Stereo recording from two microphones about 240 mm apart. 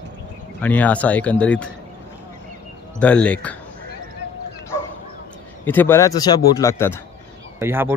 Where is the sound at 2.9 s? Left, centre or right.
Centre.